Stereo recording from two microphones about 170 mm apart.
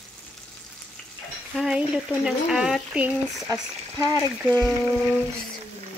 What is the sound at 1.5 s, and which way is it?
Speech, 5° right (ahead or behind).